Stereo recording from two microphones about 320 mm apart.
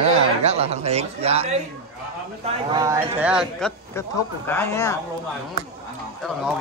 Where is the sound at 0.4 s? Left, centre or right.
Centre.